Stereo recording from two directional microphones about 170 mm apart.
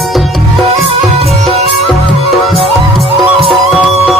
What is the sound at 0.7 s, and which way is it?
Music, 35° right (ahead or behind).